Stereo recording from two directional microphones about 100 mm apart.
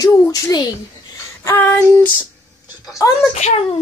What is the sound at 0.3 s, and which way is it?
Speech, 40° left (ahead or behind).